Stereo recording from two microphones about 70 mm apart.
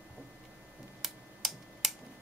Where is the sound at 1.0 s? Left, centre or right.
Centre.